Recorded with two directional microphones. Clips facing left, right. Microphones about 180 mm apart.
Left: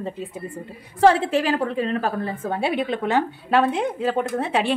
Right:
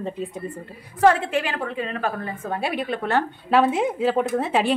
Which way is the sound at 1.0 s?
30° left (ahead or behind).